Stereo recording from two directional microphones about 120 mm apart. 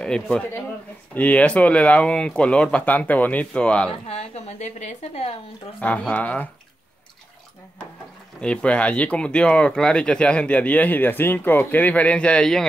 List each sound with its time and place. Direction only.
0.0 s speech: 10° left (ahead or behind)
4.1 s a woman's voice: 60° left (ahead or behind)
5.8 s speech: 10° left (ahead or behind)
8.4 s speech: 10° left (ahead or behind)